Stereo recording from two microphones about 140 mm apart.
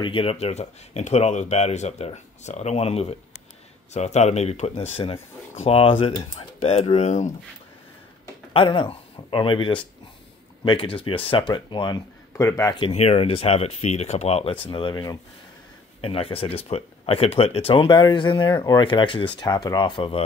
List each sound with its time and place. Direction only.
0.0 s speech: 40° left (ahead or behind); by 7.3 s 60° left (ahead or behind)
8.5 s speech: 40° left (ahead or behind)
12.4 s a man's voice: 20° left (ahead or behind)
12.9 s speech: 45° left (ahead or behind)